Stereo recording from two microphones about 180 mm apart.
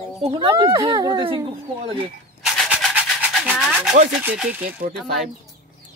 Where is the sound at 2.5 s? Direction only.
Centre (ahead or behind).